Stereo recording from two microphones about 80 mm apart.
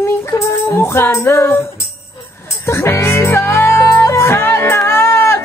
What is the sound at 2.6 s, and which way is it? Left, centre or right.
Music, left.